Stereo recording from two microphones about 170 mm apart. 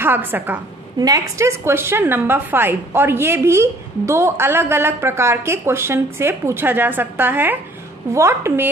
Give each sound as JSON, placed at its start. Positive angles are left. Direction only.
{"t": 0.0, "sound": "a woman's voice", "side_deg": -10}